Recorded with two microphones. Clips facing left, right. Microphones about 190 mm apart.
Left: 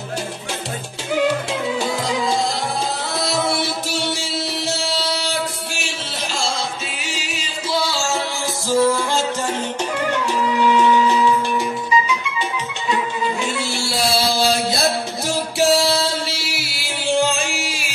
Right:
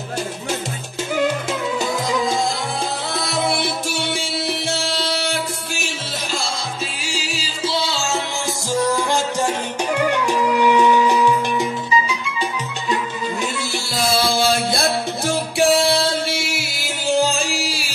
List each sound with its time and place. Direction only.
1.8 s music: 45° right (ahead or behind)
3.2 s music: 55° right (ahead or behind)
7.7 s music: 25° right (ahead or behind)
10.2 s music: 15° right (ahead or behind)
14.1 s music: 50° right (ahead or behind); by 17.9 s 35° right (ahead or behind)